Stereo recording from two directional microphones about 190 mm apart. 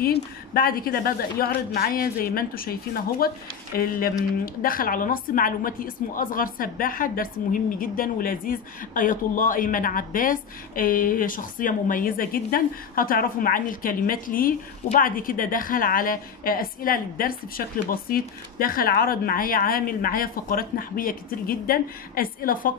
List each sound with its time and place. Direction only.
0.0 s a woman's voice: 50° left (ahead or behind)